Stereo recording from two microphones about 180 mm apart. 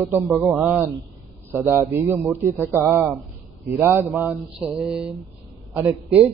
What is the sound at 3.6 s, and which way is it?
A man's voice, 15° right (ahead or behind).